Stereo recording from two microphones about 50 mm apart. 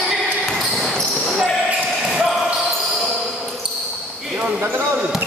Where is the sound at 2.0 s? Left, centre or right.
Centre.